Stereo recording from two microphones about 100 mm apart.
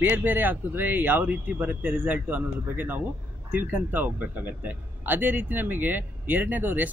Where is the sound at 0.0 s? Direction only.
20° right (ahead or behind).